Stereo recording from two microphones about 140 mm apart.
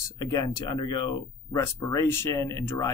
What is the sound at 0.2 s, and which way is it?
Speech, 25° left (ahead or behind).